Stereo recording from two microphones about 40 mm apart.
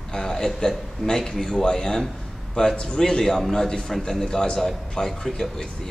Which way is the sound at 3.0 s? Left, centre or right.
Centre.